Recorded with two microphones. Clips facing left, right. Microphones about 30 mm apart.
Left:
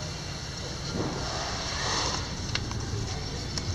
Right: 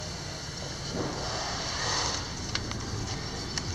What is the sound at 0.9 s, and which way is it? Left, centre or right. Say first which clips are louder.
Vehicle: left 1 dB; centre.